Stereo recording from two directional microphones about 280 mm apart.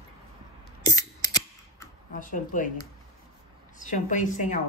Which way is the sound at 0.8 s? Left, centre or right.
Centre.